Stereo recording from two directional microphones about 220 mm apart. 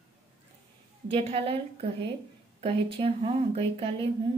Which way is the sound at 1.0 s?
25° right (ahead or behind).